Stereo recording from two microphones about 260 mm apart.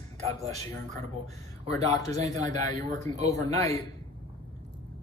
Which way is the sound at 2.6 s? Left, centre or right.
Right.